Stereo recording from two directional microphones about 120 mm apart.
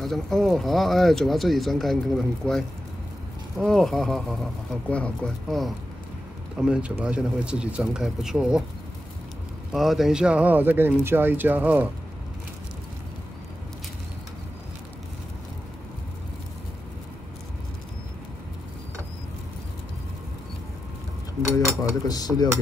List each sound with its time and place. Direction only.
0.0 s speech: centre (ahead or behind)
9.7 s speech: centre (ahead or behind)
22.0 s cutlery: 35° left (ahead or behind)